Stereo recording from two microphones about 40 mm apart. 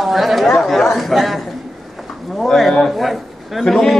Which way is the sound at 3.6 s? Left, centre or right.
Centre.